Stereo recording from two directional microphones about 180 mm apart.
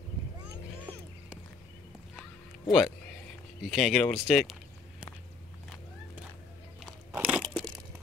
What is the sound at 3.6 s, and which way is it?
Speech, centre (ahead or behind).